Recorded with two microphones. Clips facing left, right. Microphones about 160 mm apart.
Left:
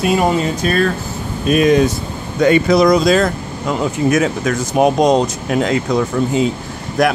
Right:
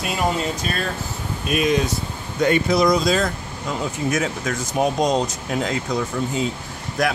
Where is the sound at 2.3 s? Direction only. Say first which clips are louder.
Left 6 dB; 90° left; by 7.1 s 70° left (ahead or behind).